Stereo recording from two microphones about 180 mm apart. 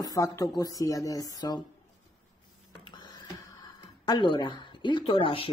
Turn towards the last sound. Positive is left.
turn(degrees=30)  # may be behind; listen again after turning